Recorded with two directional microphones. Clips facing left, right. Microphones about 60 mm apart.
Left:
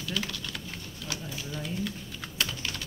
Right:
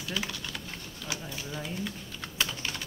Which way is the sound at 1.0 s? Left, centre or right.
Centre.